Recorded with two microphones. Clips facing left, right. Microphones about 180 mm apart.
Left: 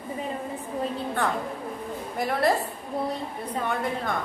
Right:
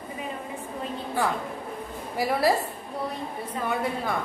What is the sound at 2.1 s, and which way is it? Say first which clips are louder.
Speech: right 1 dB; 5° right (ahead or behind).